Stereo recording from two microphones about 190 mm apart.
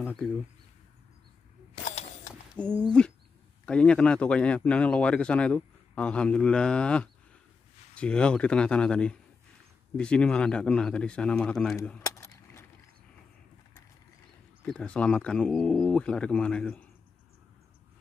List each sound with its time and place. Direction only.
0.0 s speech: 5° left (ahead or behind)
2.6 s speech: 5° left (ahead or behind)
12.0 s keys jangling: 15° left (ahead or behind)
14.6 s speech: 5° left (ahead or behind)